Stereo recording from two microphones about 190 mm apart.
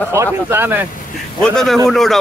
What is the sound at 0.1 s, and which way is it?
Speech, 10° right (ahead or behind).